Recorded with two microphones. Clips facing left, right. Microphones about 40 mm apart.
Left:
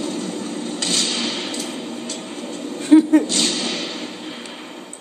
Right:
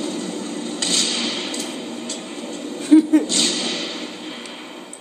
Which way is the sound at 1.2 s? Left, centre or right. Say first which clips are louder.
Even; centre.